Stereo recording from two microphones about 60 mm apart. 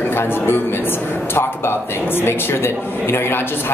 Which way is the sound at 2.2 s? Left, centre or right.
Left.